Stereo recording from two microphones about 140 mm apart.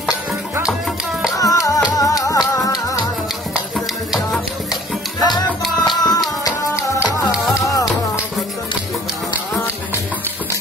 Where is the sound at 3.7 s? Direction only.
Centre (ahead or behind).